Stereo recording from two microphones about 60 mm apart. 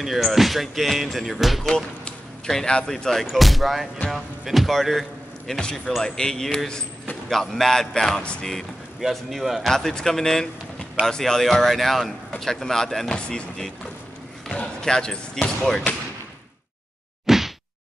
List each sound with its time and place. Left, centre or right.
0.0 s speech: centre
2.4 s speech: centre
5.5 s speech: centre
8.2 s speech: centre
9.0 s speech: centre
9.8 s speech: centre
17.3 s whack: centre